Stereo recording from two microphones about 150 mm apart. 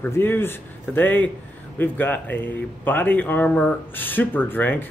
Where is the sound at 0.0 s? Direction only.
15° left (ahead or behind).